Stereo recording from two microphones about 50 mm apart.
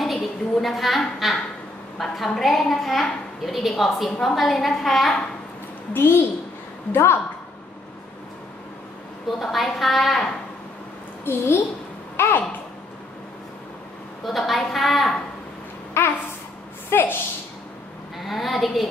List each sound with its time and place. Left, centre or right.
0.0 s a woman's voice: centre
5.9 s a child's voice: left
9.4 s a woman's voice: centre
11.2 s a child's voice: left
14.2 s a woman's voice: centre
16.0 s a woman's voice: left
18.2 s a woman's voice: centre